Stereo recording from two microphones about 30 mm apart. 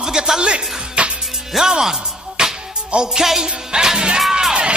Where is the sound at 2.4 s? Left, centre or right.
Right.